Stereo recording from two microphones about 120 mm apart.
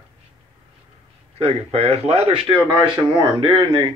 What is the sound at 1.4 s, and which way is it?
Speech, 60° right (ahead or behind).